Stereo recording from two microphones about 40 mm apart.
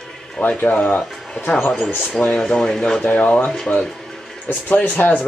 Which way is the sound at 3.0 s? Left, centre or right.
Left.